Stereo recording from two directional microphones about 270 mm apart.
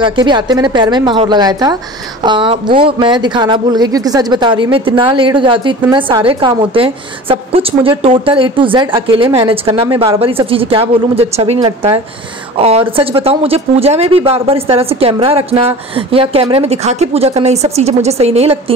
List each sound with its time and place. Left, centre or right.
0.0 s a woman's voice: centre